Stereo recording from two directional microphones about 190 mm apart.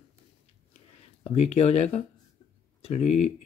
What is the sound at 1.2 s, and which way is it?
Speech, 30° left (ahead or behind).